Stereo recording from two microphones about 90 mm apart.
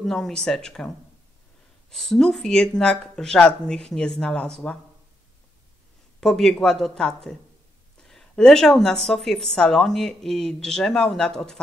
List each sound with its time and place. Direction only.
0.0 s speech: 5° left (ahead or behind)
6.2 s a woman's voice: 5° left (ahead or behind)